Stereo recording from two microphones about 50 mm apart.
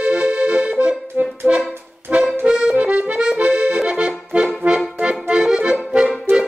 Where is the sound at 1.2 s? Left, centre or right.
Right.